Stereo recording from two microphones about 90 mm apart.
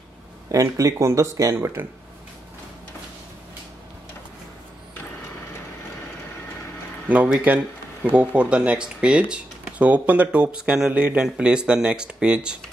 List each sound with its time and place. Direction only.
0.5 s speech: 40° right (ahead or behind)
7.1 s speech: 15° right (ahead or behind)